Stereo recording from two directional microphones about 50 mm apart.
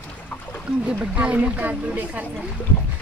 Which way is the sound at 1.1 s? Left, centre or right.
Right.